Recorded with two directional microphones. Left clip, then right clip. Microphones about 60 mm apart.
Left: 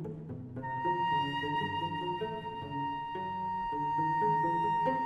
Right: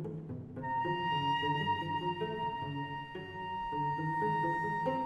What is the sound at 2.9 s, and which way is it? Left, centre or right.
Music, right.